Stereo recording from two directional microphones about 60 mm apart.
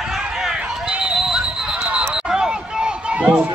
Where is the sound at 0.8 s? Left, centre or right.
Right.